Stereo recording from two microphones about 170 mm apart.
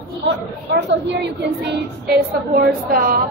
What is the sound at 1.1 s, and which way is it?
Speech, 75° right (ahead or behind).